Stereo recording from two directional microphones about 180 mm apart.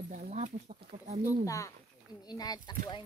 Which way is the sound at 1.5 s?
15° left (ahead or behind).